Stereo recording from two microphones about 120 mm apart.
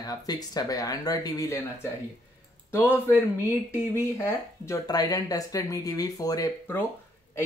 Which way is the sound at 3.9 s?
25° left (ahead or behind).